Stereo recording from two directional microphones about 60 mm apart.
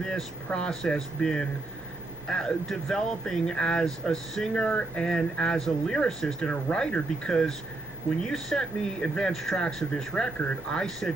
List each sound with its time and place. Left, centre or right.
0.0 s speech: centre
9.3 s speech: centre